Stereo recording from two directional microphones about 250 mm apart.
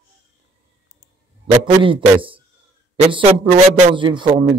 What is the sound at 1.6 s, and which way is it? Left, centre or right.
Speech, right.